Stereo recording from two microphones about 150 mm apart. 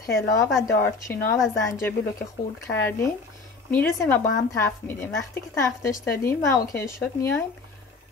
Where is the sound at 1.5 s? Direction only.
20° left (ahead or behind).